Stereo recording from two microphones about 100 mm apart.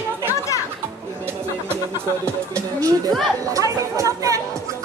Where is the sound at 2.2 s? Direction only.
30° right (ahead or behind).